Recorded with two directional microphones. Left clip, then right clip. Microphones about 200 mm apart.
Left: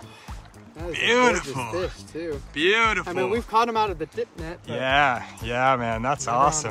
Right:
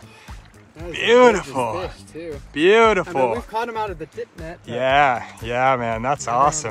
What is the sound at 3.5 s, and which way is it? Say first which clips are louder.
Speech: left 4 dB; 35° left (ahead or behind).